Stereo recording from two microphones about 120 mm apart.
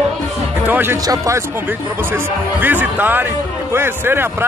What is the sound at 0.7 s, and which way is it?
Speech, 15° right (ahead or behind).